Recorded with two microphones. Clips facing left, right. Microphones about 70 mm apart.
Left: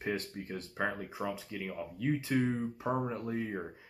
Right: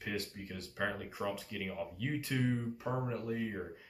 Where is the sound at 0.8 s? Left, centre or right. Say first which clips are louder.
Left 1 dB; left.